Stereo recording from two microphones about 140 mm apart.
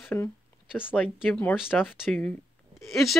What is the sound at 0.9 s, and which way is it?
Speech, 10° left (ahead or behind).